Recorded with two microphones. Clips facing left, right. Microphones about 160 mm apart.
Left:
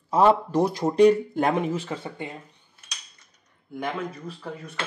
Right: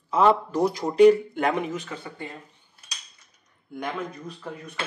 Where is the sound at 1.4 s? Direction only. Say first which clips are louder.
Left 1 dB; 30° left (ahead or behind).